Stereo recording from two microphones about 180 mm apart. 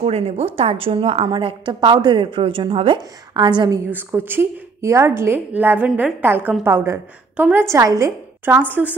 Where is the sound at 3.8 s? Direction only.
10° right (ahead or behind).